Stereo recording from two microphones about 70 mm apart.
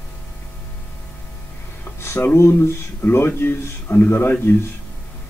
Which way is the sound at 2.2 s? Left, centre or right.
Left.